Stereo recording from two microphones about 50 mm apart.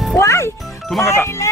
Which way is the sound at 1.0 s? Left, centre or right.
Left.